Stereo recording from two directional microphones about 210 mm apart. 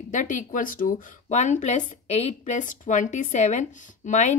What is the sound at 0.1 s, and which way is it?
Speech, 35° left (ahead or behind).